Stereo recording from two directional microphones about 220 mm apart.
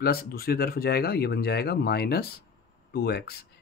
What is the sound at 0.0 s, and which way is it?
Speech, 45° left (ahead or behind).